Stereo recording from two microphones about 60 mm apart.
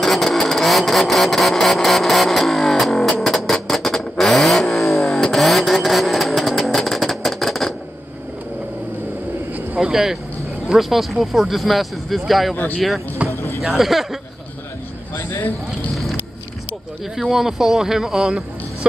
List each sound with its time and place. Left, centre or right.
0.0 s vehicle: centre
9.8 s speech: centre
13.3 s a sound: left
13.6 s speech: centre
15.1 s speech: left
15.9 s wind: centre
17.2 s speech: centre